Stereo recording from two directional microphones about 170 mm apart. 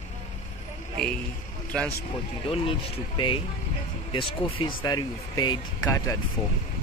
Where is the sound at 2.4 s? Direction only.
35° left (ahead or behind).